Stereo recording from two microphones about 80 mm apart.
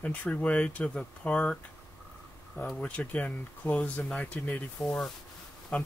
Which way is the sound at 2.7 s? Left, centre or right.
Centre.